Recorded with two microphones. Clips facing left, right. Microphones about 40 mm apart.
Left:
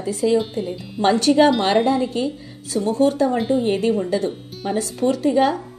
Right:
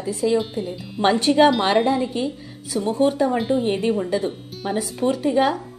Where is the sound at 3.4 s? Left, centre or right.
Centre.